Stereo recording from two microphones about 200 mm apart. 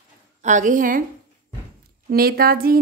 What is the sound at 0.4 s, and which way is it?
Speech, 35° right (ahead or behind).